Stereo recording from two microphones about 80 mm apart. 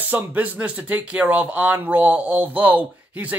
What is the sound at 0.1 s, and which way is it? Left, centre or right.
Speech, centre.